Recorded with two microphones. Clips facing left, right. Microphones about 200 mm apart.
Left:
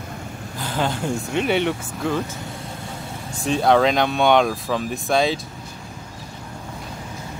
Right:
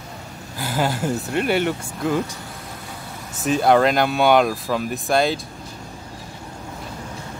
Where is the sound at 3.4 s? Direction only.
5° right (ahead or behind).